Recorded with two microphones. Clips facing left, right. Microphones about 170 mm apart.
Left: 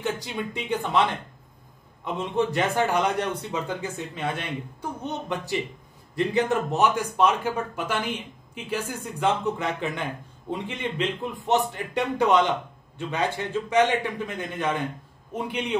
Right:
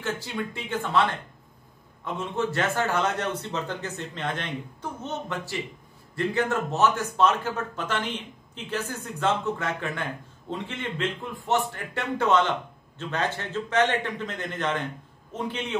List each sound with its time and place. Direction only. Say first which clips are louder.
0.0 s a man's voice: left 1 dB; 15° left (ahead or behind)
2.1 s a man's voice: left 3 dB; 15° left (ahead or behind)